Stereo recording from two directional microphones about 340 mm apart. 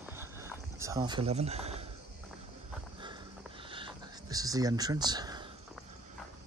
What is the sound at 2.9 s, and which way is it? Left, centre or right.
Sniff, centre.